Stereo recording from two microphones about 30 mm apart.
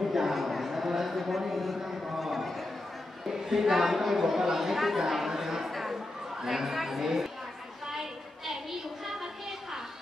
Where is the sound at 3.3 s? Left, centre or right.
Centre.